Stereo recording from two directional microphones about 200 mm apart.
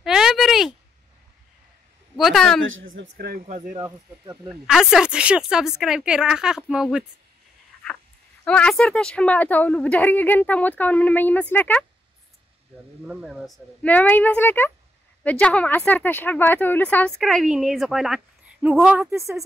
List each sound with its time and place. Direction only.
0.0 s a sound: centre (ahead or behind)
2.1 s a woman's voice: centre (ahead or behind)
2.6 s speech: 75° right (ahead or behind)
3.0 s speech: 50° right (ahead or behind)
4.5 s a woman's voice: centre (ahead or behind)
8.5 s a woman's voice: 5° left (ahead or behind)
13.0 s a woman's voice: 5° right (ahead or behind)